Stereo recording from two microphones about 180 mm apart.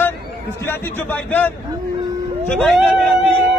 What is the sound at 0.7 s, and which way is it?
A man's voice, 10° left (ahead or behind).